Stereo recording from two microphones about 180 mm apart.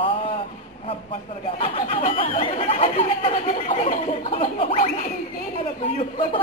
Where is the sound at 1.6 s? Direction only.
30° left (ahead or behind).